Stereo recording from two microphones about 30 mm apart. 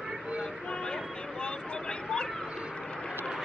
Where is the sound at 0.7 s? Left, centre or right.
Left.